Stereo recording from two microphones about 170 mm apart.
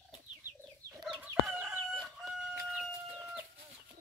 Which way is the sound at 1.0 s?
10° right (ahead or behind).